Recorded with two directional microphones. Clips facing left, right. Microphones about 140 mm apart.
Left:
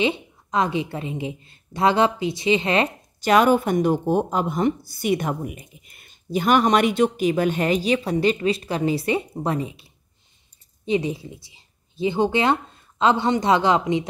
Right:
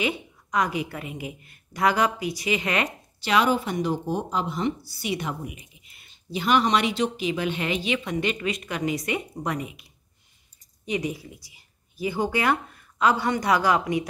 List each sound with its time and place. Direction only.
0.0 s a woman's voice: 25° left (ahead or behind)
3.2 s speech: 45° left (ahead or behind); by 9.8 s 30° left (ahead or behind)
10.9 s speech: 25° left (ahead or behind)